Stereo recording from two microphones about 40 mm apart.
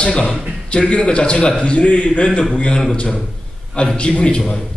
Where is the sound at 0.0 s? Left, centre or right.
Centre.